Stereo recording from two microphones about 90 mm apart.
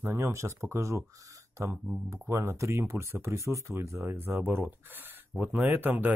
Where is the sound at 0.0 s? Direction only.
30° right (ahead or behind).